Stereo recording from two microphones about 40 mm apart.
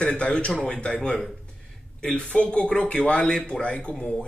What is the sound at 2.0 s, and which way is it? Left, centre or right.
Speech, left.